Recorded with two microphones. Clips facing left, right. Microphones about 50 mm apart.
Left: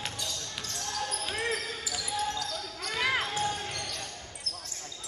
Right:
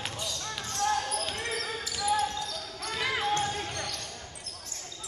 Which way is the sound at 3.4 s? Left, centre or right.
Centre.